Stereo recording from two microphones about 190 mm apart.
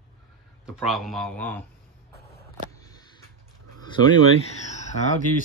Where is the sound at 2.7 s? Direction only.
20° left (ahead or behind).